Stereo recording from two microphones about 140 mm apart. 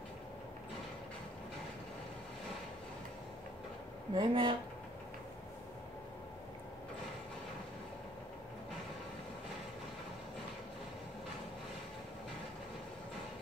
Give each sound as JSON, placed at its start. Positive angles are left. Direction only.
{"t": 4.1, "sound": "speech", "side_deg": -35}